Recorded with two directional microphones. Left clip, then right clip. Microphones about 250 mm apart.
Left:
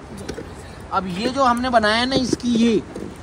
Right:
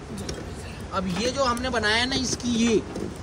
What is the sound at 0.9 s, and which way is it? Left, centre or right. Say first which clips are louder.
Speech: left 5 dB; centre.